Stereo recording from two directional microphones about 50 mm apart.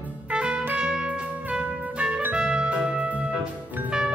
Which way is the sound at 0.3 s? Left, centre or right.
Centre.